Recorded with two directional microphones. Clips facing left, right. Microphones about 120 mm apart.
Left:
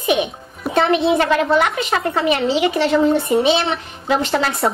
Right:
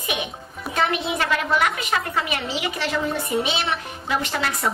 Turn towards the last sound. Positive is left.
turn(degrees=30)  # may be behind; listen again after turning